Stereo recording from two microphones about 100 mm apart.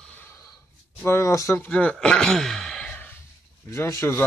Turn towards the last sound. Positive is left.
turn(degrees=30)  # may be behind; listen again after turning